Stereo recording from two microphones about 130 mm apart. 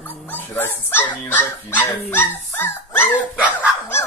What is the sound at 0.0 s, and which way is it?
Dog, 15° left (ahead or behind).